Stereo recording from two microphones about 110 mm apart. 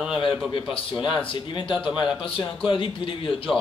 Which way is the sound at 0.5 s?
55° left (ahead or behind).